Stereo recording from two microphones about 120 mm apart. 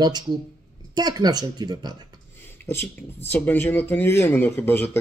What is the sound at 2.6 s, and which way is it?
Speech, 20° left (ahead or behind).